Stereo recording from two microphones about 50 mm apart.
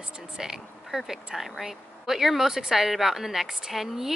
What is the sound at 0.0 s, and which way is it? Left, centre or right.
Speech, centre.